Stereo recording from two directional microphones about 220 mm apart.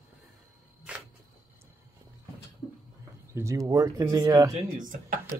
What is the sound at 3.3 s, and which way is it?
Speech, 15° right (ahead or behind).